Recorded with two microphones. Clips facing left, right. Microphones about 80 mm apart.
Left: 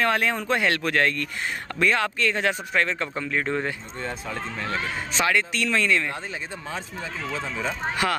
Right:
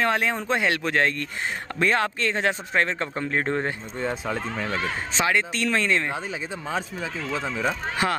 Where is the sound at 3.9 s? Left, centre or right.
Centre.